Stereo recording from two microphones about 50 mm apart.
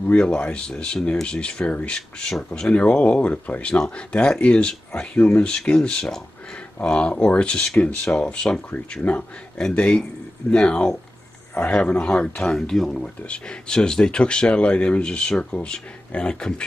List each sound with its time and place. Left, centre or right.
0.0 s speech: left
2.7 s speech: left; by 13.0 s centre
13.2 s speech: left